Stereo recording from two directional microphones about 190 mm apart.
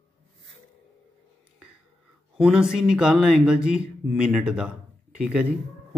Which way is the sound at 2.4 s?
5° right (ahead or behind).